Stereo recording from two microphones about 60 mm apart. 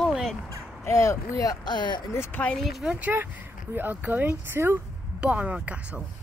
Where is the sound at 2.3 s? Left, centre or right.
Left.